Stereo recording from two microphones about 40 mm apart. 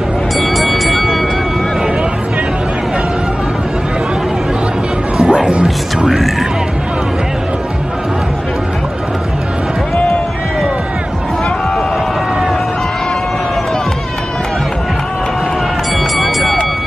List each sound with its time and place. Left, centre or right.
0.4 s music: centre
5.1 s music: right
6.0 s music: centre
16.2 s vehicle: centre